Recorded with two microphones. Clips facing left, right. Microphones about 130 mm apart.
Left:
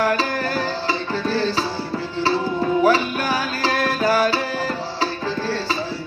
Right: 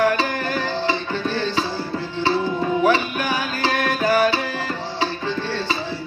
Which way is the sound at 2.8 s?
35° left (ahead or behind).